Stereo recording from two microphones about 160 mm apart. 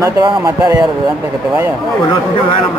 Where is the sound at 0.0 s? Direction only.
25° right (ahead or behind).